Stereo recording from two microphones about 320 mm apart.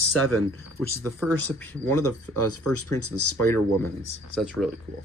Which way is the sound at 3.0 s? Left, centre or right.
Left.